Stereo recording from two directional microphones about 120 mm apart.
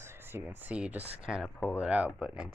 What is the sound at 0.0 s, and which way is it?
Speech, 20° right (ahead or behind).